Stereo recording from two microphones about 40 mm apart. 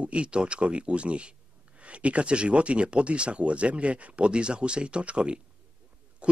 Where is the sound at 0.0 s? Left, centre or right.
Right.